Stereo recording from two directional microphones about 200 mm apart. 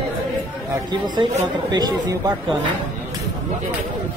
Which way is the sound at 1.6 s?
20° right (ahead or behind).